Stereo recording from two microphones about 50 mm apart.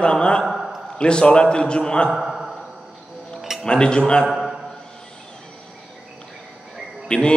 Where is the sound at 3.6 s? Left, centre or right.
Centre.